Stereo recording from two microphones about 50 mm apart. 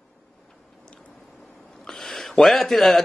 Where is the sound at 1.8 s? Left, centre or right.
Centre.